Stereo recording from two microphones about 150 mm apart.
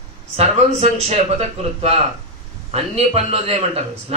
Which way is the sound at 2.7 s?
45° right (ahead or behind).